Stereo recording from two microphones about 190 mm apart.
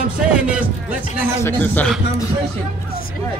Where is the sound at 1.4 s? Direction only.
10° left (ahead or behind).